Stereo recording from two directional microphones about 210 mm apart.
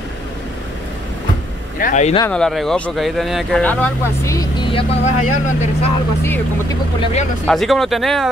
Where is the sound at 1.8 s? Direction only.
35° left (ahead or behind).